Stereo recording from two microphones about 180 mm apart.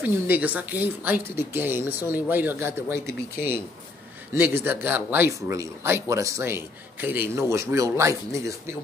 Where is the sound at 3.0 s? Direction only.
60° left (ahead or behind).